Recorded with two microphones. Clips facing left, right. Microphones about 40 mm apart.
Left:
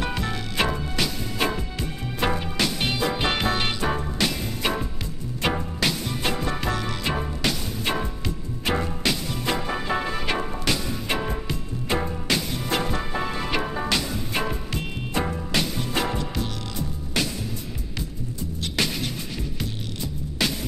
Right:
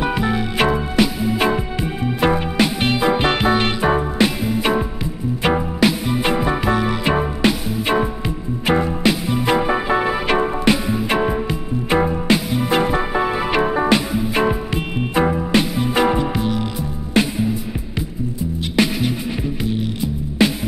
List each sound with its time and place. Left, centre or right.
0.0 s music: centre
18.8 s music: centre